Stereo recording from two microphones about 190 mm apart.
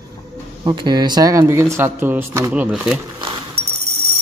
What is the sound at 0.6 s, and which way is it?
Speech, 25° right (ahead or behind).